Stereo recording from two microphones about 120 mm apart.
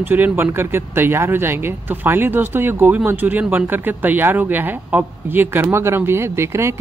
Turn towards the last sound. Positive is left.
turn(degrees=-25)  # may be behind; listen again after turning